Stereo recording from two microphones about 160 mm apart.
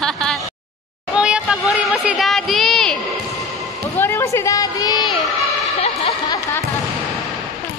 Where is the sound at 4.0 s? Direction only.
15° left (ahead or behind).